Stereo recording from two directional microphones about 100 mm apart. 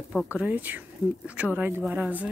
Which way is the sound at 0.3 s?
15° right (ahead or behind).